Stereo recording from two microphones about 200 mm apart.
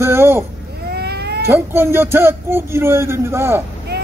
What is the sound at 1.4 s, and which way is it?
Speech, 10° right (ahead or behind).